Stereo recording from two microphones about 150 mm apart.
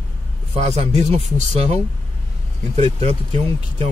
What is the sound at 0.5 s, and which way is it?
Speech, 50° right (ahead or behind).